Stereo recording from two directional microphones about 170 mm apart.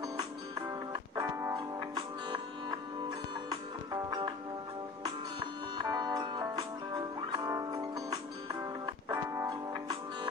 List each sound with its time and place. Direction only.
0.9 s music: 20° right (ahead or behind)
3.4 s music: 25° right (ahead or behind)
5.8 s music: 25° right (ahead or behind)
8.8 s music: 15° right (ahead or behind)